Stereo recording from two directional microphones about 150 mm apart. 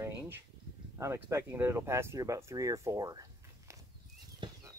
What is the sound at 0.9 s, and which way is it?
Speech, 20° right (ahead or behind).